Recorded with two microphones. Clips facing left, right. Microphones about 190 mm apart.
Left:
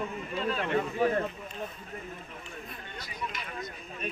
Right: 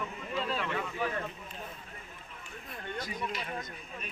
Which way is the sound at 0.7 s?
40° left (ahead or behind).